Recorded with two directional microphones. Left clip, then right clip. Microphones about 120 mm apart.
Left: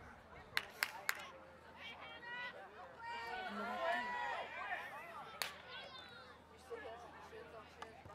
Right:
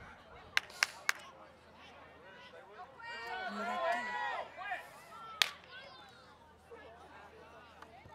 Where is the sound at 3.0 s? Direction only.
35° right (ahead or behind).